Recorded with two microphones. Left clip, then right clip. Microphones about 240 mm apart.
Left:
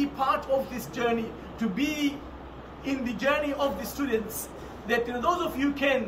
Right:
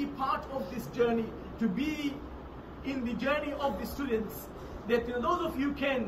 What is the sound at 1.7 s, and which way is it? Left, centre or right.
Speech, centre.